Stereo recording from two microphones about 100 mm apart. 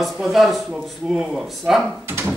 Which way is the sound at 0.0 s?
Centre (ahead or behind).